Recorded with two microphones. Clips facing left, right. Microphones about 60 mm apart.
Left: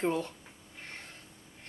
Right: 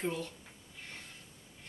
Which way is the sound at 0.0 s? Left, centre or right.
Left.